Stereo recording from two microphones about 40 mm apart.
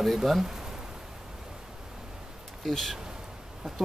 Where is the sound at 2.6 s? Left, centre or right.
Centre.